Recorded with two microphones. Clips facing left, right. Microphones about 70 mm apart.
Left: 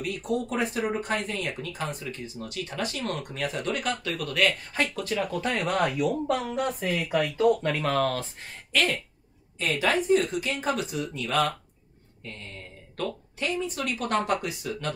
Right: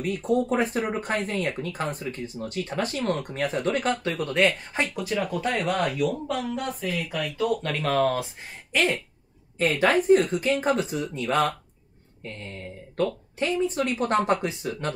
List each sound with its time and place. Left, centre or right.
0.0 s speech: right
5.0 s speech: centre
6.4 s speech: left
7.6 s speech: centre
8.7 s speech: right
9.6 s speech: right
12.9 s speech: right